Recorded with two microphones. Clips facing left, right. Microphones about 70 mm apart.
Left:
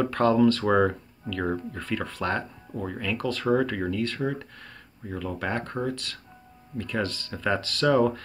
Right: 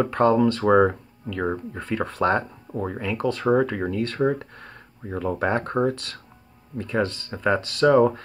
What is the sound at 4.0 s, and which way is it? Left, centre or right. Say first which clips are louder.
Speech: right 5 dB; right.